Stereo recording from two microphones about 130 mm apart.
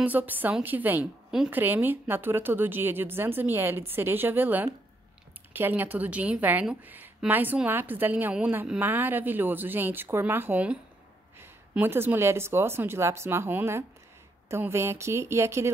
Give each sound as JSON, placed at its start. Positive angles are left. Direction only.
{"t": 0.0, "sound": "a woman's voice", "side_deg": -15}